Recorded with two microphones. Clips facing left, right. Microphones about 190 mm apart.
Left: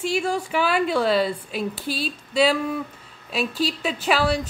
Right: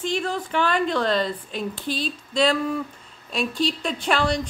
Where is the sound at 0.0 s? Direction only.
10° left (ahead or behind).